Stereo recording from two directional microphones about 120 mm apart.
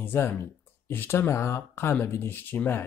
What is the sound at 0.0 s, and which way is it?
Speech, 20° left (ahead or behind).